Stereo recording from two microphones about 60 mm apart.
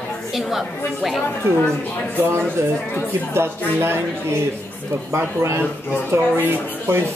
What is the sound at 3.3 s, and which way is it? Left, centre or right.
Speech, right.